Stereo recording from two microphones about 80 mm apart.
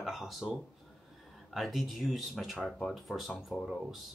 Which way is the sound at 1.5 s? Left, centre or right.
Centre.